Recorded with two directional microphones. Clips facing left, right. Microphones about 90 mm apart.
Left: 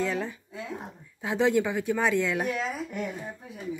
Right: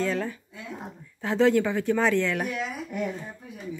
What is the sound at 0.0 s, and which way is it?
Speech, 15° left (ahead or behind).